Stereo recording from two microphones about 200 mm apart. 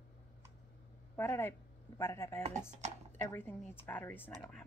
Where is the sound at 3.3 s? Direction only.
10° left (ahead or behind).